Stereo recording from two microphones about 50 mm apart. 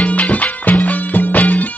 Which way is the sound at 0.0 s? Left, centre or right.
Left.